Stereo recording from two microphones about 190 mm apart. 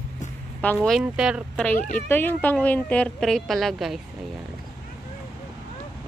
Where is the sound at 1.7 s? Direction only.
45° left (ahead or behind).